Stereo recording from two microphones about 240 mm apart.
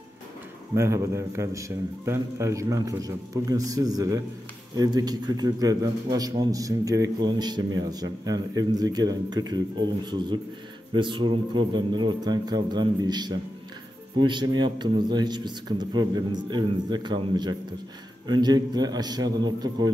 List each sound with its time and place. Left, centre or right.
0.7 s a man's voice: centre
10.9 s a man's voice: centre